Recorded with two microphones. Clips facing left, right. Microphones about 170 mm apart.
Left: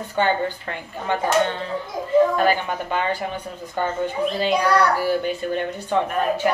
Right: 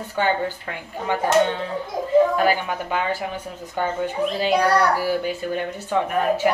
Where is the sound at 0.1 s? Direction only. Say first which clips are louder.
Left 1 dB; 5° right (ahead or behind).